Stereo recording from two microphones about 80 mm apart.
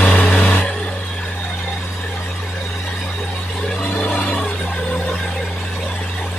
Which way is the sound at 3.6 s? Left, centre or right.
Centre.